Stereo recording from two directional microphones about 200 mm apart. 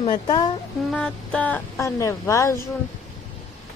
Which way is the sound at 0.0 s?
25° left (ahead or behind).